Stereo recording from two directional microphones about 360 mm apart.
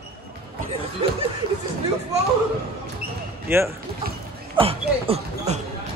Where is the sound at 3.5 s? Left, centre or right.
Centre.